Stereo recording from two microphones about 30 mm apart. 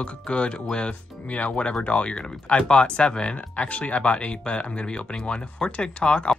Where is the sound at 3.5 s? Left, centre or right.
Left.